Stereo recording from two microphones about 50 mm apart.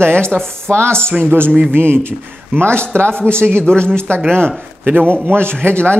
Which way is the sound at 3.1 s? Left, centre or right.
Left.